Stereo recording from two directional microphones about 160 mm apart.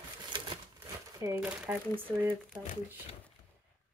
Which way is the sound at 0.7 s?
15° right (ahead or behind).